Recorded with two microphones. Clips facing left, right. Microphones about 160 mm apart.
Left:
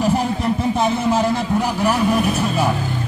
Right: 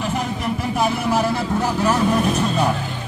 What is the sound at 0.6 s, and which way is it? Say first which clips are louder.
Vehicle: left 2 dB; 25° left (ahead or behind).